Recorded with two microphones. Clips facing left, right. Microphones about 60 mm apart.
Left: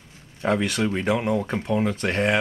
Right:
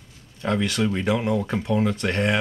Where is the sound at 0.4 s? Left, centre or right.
Centre.